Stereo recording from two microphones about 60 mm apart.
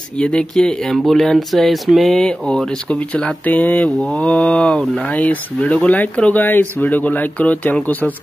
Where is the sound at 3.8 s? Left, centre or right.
Centre.